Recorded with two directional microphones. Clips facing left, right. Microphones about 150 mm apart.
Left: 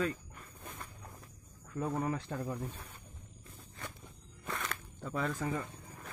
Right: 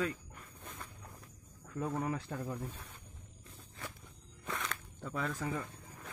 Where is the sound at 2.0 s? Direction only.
5° right (ahead or behind).